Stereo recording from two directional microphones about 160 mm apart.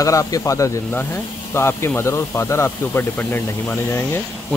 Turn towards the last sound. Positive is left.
turn(degrees=15)  # may be behind; listen again after turning